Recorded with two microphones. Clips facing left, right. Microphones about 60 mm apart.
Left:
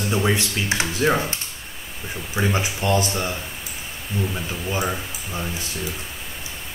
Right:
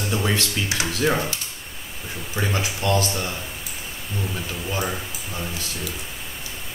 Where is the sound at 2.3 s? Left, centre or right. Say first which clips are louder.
Left 2 dB; centre.